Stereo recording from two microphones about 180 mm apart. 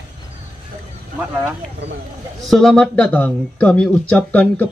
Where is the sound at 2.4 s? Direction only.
Centre (ahead or behind).